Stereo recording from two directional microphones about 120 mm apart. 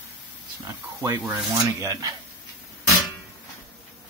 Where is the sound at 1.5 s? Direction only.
25° right (ahead or behind).